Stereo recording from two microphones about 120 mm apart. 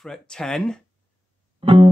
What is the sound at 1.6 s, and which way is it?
Music, 45° right (ahead or behind).